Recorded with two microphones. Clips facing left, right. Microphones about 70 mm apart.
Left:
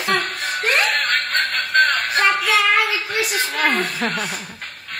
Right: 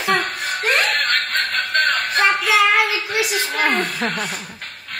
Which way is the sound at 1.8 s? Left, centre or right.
Centre.